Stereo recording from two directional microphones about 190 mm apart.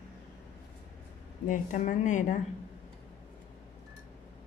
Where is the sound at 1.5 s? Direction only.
40° left (ahead or behind).